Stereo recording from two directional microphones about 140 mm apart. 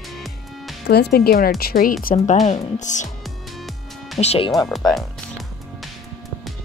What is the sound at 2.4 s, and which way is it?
Speech, 55° left (ahead or behind).